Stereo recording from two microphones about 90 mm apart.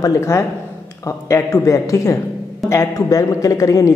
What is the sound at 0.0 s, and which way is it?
A man's voice, 30° left (ahead or behind).